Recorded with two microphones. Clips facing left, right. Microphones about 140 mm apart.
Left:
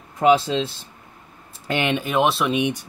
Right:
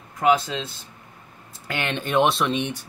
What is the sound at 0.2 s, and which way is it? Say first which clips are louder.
Speech: left 4 dB; 25° left (ahead or behind).